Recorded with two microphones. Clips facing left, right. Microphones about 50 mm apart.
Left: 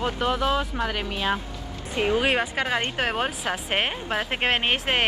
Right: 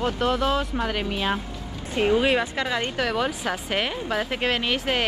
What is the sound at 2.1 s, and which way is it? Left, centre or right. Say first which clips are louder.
Speech: right 1 dB; centre.